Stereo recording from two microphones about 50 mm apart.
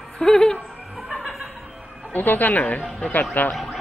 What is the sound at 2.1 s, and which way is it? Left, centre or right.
Speech, left.